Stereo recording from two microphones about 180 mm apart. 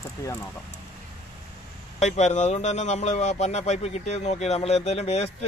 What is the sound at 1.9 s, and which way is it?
Speech, 40° left (ahead or behind).